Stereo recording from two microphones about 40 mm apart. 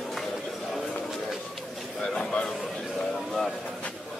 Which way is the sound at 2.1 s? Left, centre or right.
Left.